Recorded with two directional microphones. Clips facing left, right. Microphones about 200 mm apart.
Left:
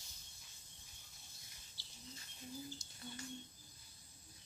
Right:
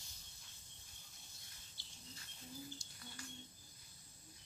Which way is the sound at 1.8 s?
55° right (ahead or behind).